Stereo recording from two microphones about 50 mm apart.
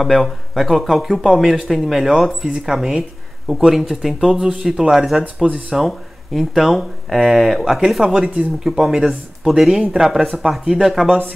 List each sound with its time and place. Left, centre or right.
0.0 s speech: centre
5.4 s speech: centre
5.8 s speech: centre